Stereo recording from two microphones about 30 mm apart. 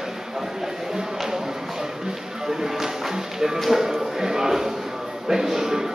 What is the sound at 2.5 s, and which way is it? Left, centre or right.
Music, centre.